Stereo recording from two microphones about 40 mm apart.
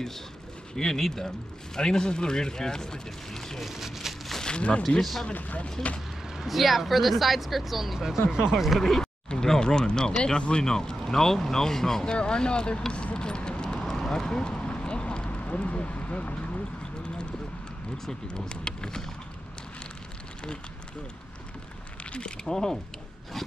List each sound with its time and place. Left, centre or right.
0.7 s speech: centre
3.6 s speech: centre
4.5 s speech: left
6.3 s speech: centre
8.7 s speech: centre
13.8 s a sound: centre; by 16.6 s left
17.9 s speech: centre
22.1 s speech: left